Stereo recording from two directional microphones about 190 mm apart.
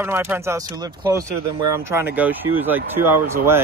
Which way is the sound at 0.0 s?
10° right (ahead or behind).